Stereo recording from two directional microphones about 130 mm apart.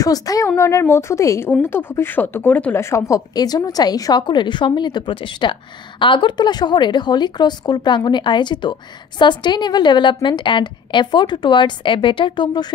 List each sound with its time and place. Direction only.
0.0 s a woman's voice: 25° left (ahead or behind)